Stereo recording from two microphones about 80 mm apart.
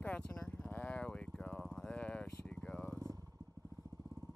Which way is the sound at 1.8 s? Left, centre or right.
Centre.